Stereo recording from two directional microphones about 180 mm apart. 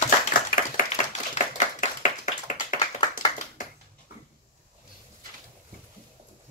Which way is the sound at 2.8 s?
30° left (ahead or behind).